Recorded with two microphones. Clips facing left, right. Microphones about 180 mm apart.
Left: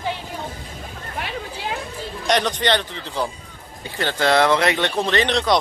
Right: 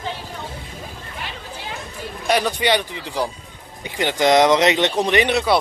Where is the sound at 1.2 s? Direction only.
60° left (ahead or behind).